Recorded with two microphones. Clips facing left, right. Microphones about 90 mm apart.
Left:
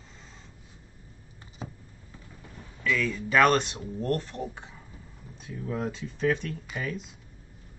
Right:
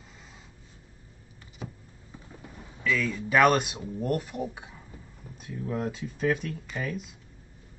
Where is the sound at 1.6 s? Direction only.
25° left (ahead or behind).